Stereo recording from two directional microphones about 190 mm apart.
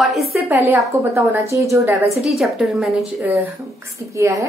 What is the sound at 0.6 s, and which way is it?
A woman's voice, 15° right (ahead or behind).